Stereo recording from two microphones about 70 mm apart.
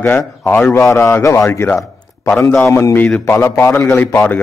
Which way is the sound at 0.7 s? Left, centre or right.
Left.